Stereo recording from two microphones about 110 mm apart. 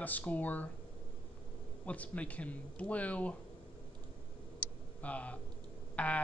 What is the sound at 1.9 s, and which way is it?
Speech, 10° left (ahead or behind).